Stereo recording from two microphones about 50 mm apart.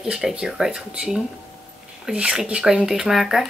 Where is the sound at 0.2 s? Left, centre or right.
Centre.